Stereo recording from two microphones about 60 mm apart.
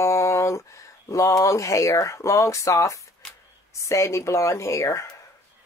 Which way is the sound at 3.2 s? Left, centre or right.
Centre.